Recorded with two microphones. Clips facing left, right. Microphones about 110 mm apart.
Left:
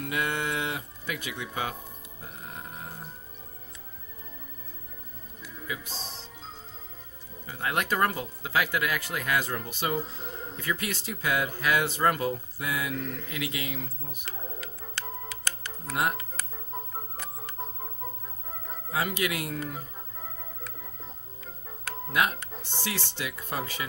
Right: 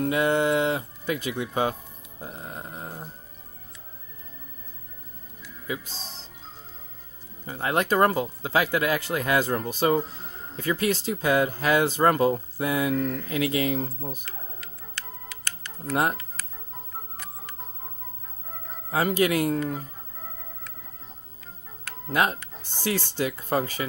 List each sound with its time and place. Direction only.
0.0 s speech: 30° right (ahead or behind)
5.7 s speech: 30° right (ahead or behind)
7.4 s speech: 30° right (ahead or behind)
15.9 s speech: 35° right (ahead or behind)
18.9 s speech: 40° right (ahead or behind)
22.1 s speech: 35° right (ahead or behind)